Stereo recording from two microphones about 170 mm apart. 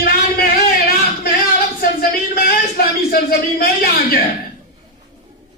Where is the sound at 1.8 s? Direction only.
65° left (ahead or behind).